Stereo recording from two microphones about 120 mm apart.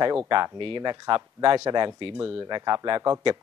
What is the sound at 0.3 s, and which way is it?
Speech, 45° right (ahead or behind).